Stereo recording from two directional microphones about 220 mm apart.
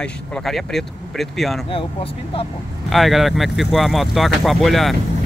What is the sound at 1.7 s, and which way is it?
Speech, 25° left (ahead or behind).